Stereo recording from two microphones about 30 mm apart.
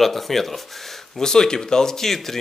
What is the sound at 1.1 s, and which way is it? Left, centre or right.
Speech, centre.